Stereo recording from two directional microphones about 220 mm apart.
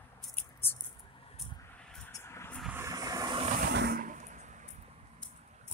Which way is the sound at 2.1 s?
10° left (ahead or behind).